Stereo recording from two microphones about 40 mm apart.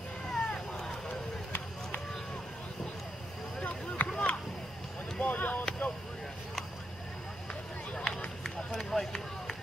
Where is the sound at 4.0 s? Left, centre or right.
Left.